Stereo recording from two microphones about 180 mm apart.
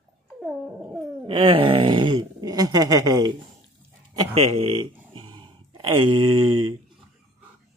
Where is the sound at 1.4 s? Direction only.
30° right (ahead or behind).